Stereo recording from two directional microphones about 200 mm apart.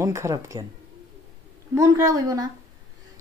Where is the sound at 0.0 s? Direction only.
15° right (ahead or behind).